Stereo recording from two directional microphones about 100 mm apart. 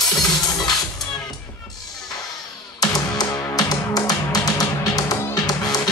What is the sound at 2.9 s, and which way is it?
Music, 40° left (ahead or behind).